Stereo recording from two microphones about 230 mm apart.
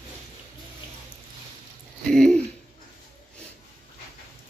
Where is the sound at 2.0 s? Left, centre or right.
Centre.